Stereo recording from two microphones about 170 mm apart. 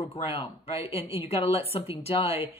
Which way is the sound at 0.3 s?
35° left (ahead or behind).